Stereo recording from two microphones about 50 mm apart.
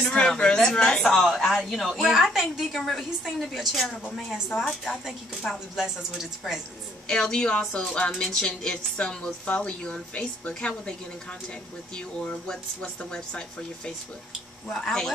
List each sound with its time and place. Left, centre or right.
0.0 s speech: centre
1.0 s speech: centre
2.0 s a woman's voice: centre
2.8 s speech: centre
7.1 s speech: centre
11.9 s speech: centre